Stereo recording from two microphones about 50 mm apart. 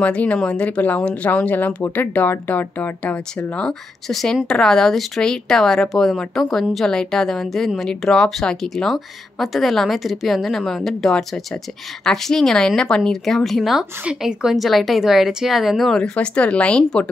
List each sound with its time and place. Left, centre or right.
0.0 s speech: left
4.1 s a woman's voice: centre
16.0 s speech: left